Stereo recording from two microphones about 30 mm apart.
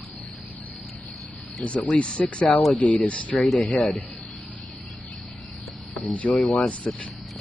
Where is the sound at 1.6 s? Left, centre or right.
Left.